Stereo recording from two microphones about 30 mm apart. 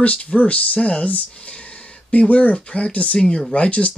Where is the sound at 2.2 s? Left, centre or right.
Left.